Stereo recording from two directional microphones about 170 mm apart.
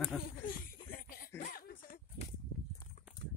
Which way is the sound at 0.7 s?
60° left (ahead or behind).